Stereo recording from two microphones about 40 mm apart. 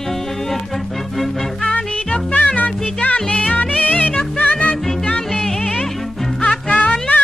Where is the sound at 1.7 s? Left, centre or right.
Left.